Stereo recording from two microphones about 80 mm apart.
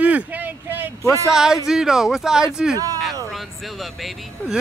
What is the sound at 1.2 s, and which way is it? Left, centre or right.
Speech, centre.